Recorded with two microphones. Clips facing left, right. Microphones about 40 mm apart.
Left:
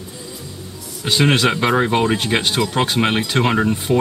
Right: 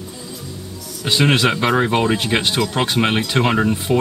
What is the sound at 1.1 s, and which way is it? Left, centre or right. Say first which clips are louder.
Speech: even; centre.